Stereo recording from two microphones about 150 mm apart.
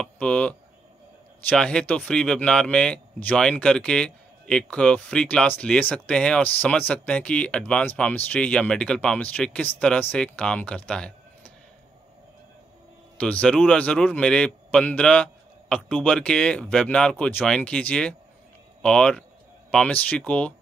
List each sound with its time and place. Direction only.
0.0 s speech: 10° left (ahead or behind)
13.2 s speech: 5° left (ahead or behind)